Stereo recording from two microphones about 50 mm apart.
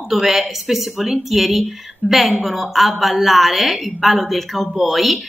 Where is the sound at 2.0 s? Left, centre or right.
Right.